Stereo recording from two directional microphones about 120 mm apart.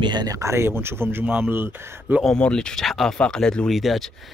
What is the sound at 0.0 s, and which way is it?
Speech, 35° right (ahead or behind).